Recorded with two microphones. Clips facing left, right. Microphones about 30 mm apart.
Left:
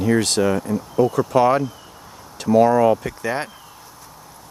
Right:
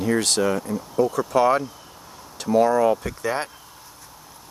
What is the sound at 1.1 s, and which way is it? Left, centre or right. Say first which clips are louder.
Speech: left 2 dB; left.